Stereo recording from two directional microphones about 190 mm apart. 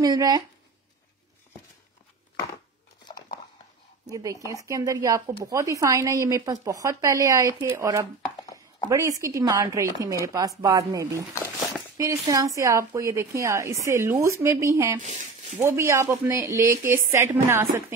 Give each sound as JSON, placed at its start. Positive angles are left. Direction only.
{"t": 0.0, "sound": "speech", "side_deg": -20}
{"t": 4.0, "sound": "a woman's voice", "side_deg": -20}